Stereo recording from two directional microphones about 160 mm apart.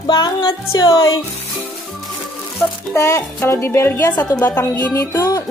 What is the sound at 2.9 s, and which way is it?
Speech, 20° left (ahead or behind).